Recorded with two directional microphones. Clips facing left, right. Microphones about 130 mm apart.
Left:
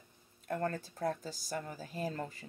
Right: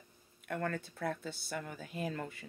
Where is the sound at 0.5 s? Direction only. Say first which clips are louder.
Left 1 dB; 35° left (ahead or behind).